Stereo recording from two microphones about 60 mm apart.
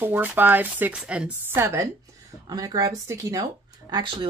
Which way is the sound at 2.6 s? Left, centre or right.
Right.